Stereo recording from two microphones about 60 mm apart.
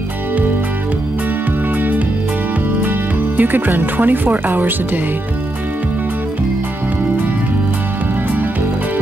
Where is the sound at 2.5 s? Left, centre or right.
Right.